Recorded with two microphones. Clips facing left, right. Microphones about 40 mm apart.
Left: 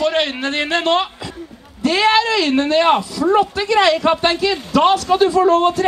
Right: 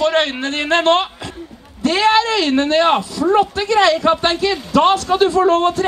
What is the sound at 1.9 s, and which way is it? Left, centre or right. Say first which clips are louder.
Speech: right 1 dB; left.